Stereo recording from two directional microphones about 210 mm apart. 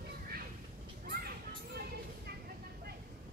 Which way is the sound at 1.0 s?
45° right (ahead or behind).